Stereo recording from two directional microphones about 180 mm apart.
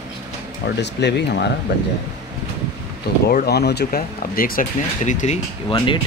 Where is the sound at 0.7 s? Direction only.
70° left (ahead or behind).